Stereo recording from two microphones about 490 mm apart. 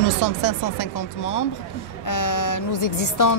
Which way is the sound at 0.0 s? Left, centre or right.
Left.